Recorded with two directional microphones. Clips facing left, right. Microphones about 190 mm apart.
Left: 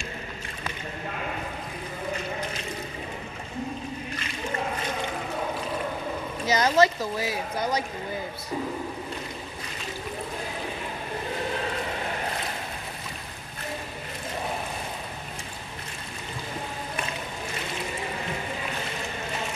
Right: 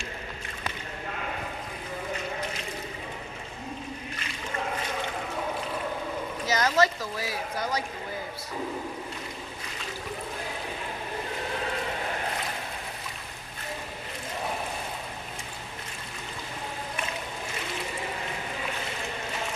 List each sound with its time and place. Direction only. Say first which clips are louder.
6.5 s speech: left 3 dB; 20° left (ahead or behind)